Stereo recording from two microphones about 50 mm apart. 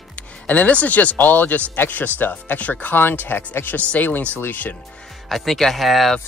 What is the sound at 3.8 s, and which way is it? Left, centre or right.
Speech, left.